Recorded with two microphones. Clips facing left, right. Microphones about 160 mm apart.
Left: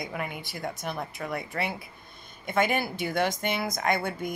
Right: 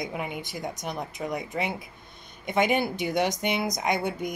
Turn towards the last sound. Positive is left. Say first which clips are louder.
# right 1 dB
turn(degrees=-15)  # may be behind; listen again after turning